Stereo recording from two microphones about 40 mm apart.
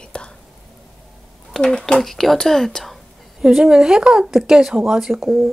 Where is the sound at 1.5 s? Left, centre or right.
Centre.